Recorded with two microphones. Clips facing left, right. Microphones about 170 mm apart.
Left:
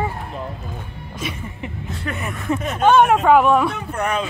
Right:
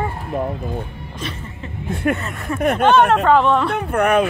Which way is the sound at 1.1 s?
10° left (ahead or behind).